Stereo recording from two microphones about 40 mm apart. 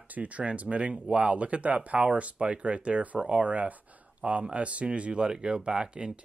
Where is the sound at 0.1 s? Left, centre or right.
Right.